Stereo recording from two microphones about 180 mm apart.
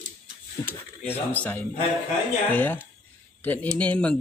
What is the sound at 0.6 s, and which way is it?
Speech, 20° left (ahead or behind).